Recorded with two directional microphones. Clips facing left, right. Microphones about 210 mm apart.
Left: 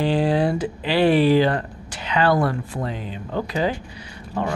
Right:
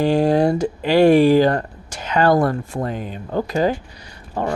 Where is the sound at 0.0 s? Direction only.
45° right (ahead or behind).